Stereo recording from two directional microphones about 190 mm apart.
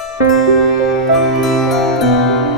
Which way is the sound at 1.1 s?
Centre (ahead or behind).